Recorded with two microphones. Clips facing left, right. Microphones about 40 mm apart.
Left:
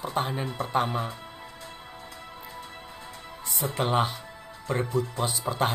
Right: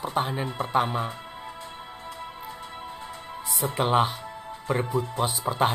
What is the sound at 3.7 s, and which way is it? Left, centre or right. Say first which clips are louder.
Speech: right 3 dB; centre.